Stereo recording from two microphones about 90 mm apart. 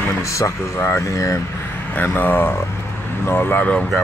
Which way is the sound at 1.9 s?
20° left (ahead or behind).